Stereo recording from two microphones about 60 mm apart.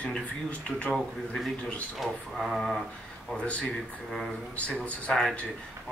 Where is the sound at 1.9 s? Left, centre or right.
Centre.